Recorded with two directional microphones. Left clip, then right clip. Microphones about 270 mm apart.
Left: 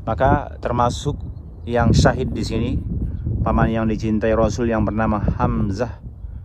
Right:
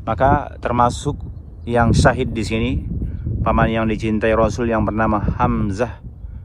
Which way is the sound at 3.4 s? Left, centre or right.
Centre.